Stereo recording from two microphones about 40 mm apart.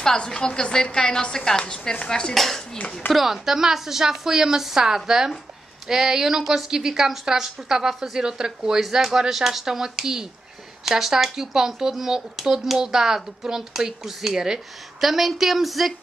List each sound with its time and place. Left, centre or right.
0.0 s a woman's voice: centre
2.3 s a woman's voice: centre
3.1 s speech: centre